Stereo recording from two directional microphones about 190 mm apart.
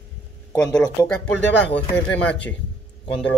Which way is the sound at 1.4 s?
65° left (ahead or behind).